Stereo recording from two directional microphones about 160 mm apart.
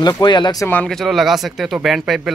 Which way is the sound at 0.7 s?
5° left (ahead or behind).